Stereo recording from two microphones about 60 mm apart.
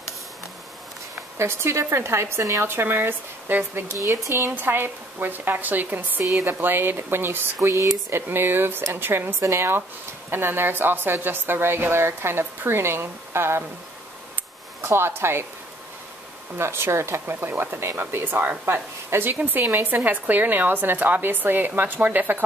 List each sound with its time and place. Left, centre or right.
1.4 s speech: right
3.9 s speech: right
4.5 s a woman's voice: right
8.1 s a woman's voice: right
14.8 s speech: right
16.5 s a woman's voice: right
18.7 s a woman's voice: right
19.3 s a woman's voice: right